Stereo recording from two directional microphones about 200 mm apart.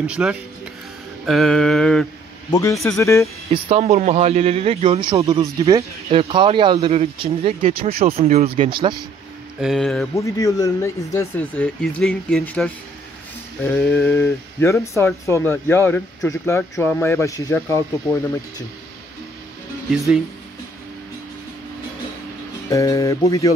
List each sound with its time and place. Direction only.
0.0 s a sound: 5° right (ahead or behind)
2.5 s speech: 15° left (ahead or behind)
3.6 s speech: 30° right (ahead or behind)
5.4 s speech: 15° right (ahead or behind)
9.6 s a sound: centre (ahead or behind)
10.1 s speech: 15° left (ahead or behind)
22.7 s speech: 15° left (ahead or behind)